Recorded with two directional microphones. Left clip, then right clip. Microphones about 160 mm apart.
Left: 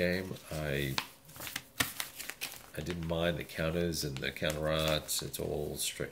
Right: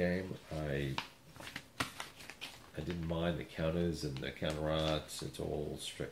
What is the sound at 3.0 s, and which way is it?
Speech, 20° left (ahead or behind).